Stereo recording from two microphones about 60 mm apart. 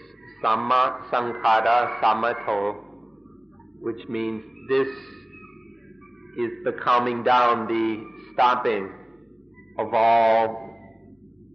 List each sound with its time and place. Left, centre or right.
0.4 s a man's voice: centre
6.3 s a man's voice: centre
9.8 s a sound: centre